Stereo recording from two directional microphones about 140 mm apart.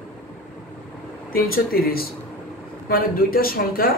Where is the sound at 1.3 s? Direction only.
90° left.